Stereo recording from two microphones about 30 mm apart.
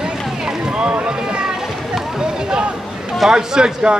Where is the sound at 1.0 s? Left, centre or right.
Right.